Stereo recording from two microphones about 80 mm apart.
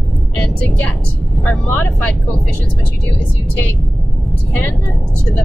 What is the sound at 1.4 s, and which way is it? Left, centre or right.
Speech, left.